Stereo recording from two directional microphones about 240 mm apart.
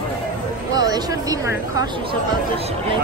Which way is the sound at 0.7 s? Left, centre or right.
Centre.